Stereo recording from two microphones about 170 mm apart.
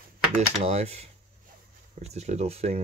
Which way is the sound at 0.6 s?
40° right (ahead or behind).